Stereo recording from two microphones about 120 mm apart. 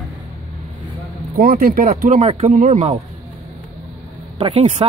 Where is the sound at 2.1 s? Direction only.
70° right (ahead or behind).